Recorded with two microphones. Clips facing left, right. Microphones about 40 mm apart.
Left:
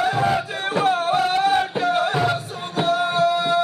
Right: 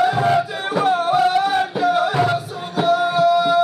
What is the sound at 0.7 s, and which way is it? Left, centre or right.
Music, left.